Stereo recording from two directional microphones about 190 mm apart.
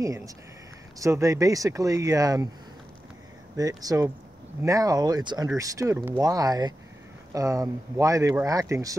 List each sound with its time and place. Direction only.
0.0 s speech: 15° right (ahead or behind)
3.5 s speech: 20° right (ahead or behind)